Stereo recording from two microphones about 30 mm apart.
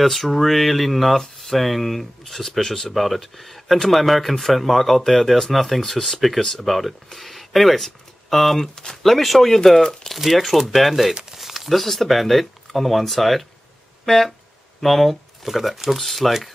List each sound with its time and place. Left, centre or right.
0.0 s speech: centre
2.9 s speech: centre
6.6 s speech: centre
11.3 s a sound: centre
11.7 s speech: centre
14.1 s speech: left
14.8 s speech: centre
15.4 s speech: centre